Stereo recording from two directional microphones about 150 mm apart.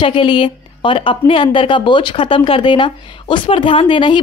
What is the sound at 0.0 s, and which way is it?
A woman's voice, 35° left (ahead or behind).